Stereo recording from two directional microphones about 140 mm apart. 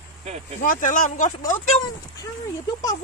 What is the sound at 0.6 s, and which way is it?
Speech, 75° left (ahead or behind).